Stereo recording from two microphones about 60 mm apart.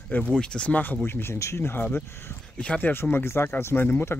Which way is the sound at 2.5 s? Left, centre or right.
Centre.